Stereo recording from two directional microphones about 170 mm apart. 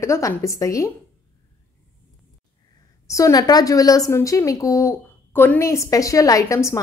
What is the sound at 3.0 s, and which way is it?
A woman's voice, 20° left (ahead or behind).